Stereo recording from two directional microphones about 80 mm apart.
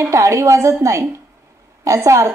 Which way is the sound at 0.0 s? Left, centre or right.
Right.